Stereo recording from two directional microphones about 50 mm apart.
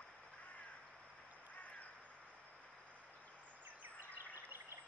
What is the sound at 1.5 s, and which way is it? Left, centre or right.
Crow, left.